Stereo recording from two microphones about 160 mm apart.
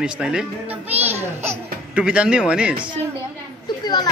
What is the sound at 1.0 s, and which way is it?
Baby laughter, 15° right (ahead or behind).